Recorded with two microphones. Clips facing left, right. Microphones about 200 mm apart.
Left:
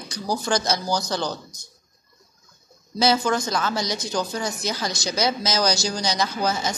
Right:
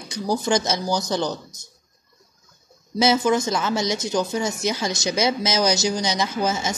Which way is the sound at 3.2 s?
25° right (ahead or behind).